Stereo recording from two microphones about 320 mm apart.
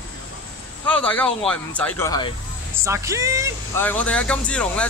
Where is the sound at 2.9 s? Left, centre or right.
Centre.